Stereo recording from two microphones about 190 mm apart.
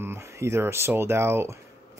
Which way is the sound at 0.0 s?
15° right (ahead or behind).